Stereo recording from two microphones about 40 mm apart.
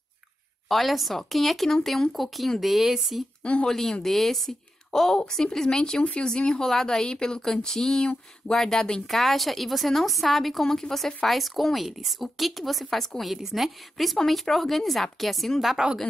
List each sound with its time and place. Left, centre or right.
0.7 s a woman's voice: centre
3.6 s a woman's voice: centre
11.2 s a woman's voice: centre
15.8 s speech: centre